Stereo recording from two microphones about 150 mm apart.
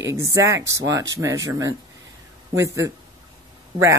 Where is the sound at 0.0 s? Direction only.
20° right (ahead or behind).